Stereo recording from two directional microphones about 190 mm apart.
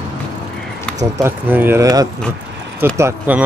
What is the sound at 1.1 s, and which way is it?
Speech, 10° right (ahead or behind).